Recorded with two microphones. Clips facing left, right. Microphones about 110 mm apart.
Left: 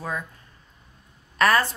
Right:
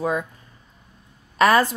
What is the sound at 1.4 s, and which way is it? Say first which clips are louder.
Speech: right 4 dB; 15° right (ahead or behind).